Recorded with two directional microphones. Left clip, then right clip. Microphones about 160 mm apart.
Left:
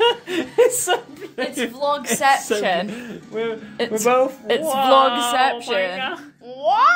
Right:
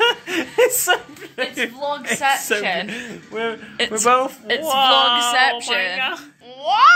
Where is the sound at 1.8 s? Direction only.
90° left.